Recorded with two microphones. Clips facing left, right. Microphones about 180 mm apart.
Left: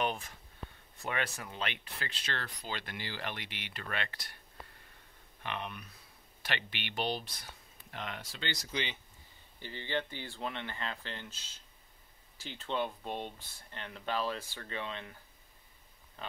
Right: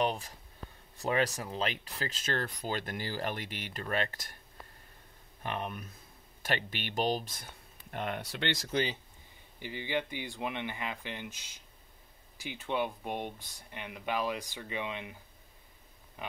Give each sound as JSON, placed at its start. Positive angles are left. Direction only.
{"t": 0.0, "sound": "speech", "side_deg": -35}
{"t": 5.4, "sound": "speech", "side_deg": -40}
{"t": 9.6, "sound": "speech", "side_deg": -15}
{"t": 16.2, "sound": "speech", "side_deg": -15}